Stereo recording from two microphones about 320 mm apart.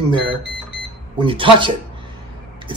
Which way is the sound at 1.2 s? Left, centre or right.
Centre.